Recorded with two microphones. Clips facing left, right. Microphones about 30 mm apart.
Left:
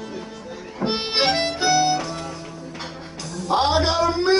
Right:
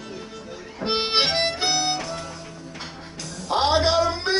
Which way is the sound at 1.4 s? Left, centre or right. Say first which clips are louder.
Left 3 dB; centre.